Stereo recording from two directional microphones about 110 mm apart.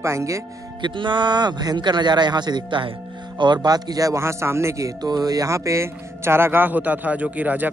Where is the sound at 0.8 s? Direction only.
45° right (ahead or behind).